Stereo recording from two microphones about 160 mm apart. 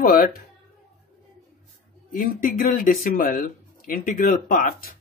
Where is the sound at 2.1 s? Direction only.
55° left (ahead or behind).